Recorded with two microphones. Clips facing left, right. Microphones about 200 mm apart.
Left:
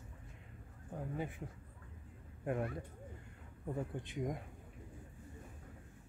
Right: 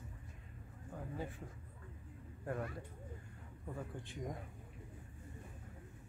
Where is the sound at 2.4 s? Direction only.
20° left (ahead or behind).